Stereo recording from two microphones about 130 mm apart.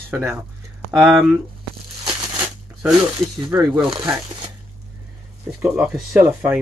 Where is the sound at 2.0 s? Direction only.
35° right (ahead or behind).